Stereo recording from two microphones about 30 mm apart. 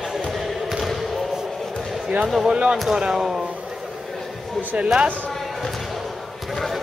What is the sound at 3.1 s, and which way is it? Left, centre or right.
Speech, centre.